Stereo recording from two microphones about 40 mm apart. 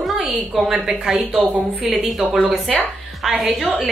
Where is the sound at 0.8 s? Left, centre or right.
Centre.